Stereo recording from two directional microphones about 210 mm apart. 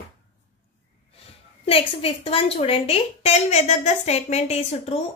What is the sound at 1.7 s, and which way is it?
A woman's voice, 25° left (ahead or behind).